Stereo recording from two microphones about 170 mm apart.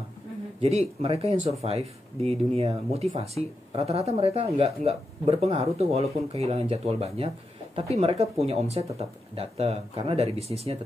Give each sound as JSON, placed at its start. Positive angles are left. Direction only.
{"t": 0.6, "sound": "speech", "side_deg": -35}